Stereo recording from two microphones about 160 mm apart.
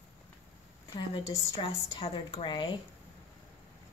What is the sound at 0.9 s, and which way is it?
A woman's voice, 25° left (ahead or behind).